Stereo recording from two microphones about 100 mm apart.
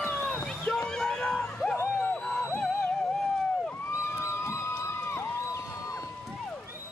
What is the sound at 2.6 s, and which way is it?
Music, 5° left (ahead or behind).